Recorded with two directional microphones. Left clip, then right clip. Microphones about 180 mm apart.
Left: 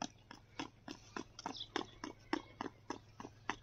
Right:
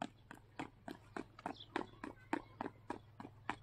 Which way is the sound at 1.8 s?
10° right (ahead or behind).